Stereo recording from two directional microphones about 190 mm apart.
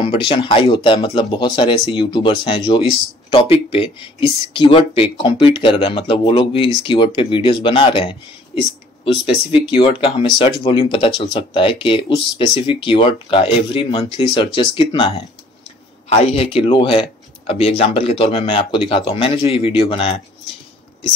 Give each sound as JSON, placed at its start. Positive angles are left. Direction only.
{"t": 0.0, "sound": "speech", "side_deg": 25}